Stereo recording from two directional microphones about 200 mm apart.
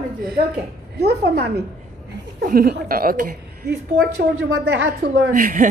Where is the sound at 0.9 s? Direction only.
55° right (ahead or behind).